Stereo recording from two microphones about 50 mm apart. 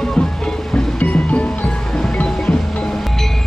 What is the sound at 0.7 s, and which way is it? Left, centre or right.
Music, left.